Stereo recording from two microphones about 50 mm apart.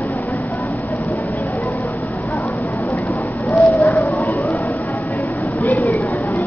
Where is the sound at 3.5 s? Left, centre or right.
Left.